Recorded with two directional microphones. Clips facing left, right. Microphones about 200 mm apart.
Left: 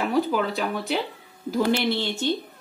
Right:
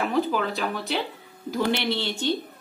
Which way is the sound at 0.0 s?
10° left (ahead or behind).